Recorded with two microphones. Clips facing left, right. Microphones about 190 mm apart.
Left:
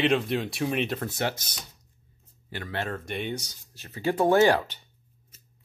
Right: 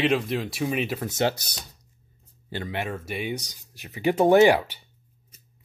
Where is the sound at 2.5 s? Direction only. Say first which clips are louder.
Right 4 dB; 25° right (ahead or behind).